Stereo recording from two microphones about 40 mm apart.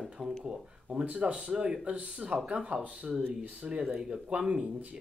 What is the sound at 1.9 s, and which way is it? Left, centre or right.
Speech, right.